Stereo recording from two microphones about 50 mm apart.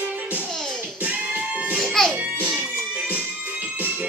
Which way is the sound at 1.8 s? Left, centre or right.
Centre.